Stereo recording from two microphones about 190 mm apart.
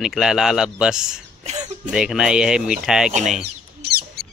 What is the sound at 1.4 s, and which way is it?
Speech, 35° right (ahead or behind).